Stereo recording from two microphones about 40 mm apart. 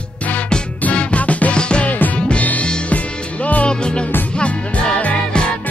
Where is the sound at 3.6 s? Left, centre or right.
Left.